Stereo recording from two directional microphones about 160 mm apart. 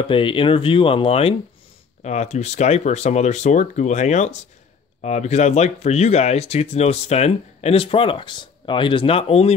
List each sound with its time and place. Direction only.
0.1 s speech: 35° left (ahead or behind)